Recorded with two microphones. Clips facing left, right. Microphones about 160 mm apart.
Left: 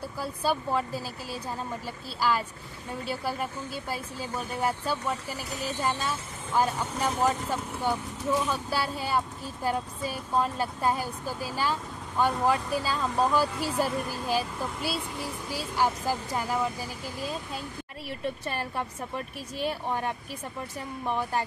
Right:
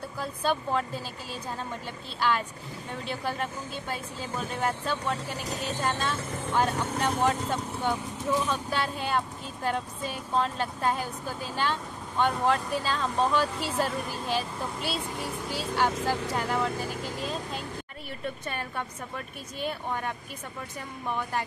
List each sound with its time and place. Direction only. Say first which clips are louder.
0.2 s speech: even; 10° left (ahead or behind)
15.8 s speech: even; 10° left (ahead or behind)
18.4 s a woman's voice: left 2 dB; 30° left (ahead or behind)